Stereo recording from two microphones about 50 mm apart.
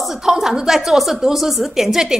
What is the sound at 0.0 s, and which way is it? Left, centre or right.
A woman's voice, centre.